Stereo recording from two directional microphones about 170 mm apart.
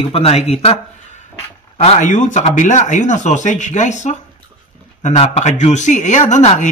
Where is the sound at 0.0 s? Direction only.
35° left (ahead or behind).